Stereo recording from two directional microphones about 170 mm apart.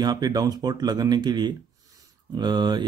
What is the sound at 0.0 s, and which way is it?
Speech, 25° right (ahead or behind).